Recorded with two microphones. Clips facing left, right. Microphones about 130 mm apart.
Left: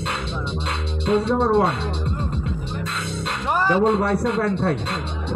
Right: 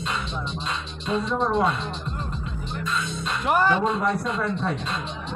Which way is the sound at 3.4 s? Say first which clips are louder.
Right 1 dB; centre (ahead or behind).